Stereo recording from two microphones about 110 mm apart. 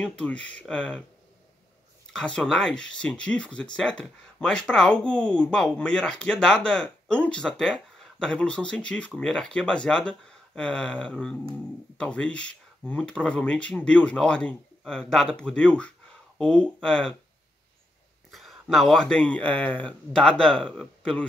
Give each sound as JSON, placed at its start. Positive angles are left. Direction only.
{"t": 0.0, "sound": "speech", "side_deg": 10}
{"t": 2.1, "sound": "speech", "side_deg": 10}
{"t": 18.3, "sound": "speech", "side_deg": 0}